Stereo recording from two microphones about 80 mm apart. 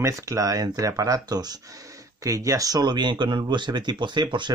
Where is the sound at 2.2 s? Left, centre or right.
Right.